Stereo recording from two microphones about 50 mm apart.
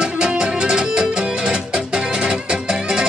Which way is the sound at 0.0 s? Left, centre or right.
Centre.